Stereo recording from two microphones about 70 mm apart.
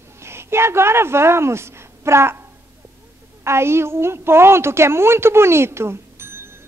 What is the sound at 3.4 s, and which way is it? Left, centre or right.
A woman's voice, right.